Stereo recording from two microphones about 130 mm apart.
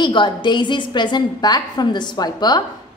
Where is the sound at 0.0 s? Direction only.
35° left (ahead or behind).